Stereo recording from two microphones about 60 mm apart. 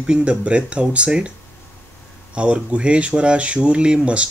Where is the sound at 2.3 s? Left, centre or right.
Centre.